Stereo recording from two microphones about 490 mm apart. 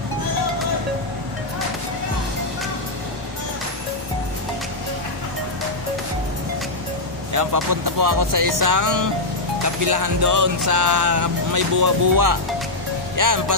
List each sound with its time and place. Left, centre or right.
7.3 s speech: right